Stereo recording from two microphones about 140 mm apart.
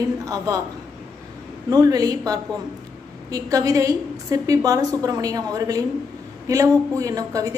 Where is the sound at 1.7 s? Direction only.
25° right (ahead or behind).